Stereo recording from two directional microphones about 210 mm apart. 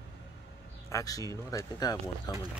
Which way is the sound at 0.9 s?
15° left (ahead or behind).